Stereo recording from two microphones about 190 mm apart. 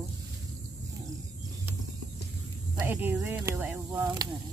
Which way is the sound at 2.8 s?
10° right (ahead or behind).